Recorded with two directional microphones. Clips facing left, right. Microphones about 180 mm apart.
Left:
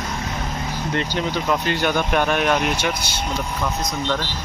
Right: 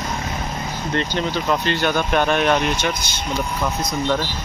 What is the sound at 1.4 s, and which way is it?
Speech, 10° left (ahead or behind).